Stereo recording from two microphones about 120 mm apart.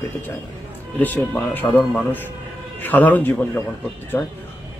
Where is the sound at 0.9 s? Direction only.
15° left (ahead or behind).